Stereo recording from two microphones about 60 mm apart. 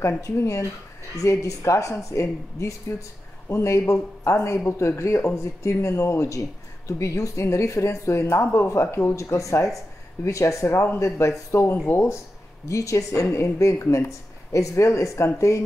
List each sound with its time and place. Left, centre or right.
0.2 s a woman's voice: left
11.7 s speech: left
12.6 s a woman's voice: left